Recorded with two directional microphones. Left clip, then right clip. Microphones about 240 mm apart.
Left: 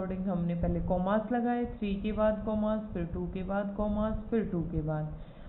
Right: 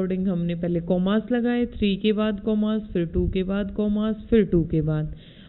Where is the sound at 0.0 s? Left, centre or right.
Right.